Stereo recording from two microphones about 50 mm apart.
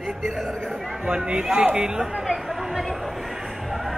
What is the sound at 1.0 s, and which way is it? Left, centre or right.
Speech, centre.